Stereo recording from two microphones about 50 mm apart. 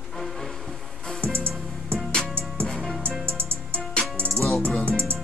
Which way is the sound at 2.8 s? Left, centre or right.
Centre.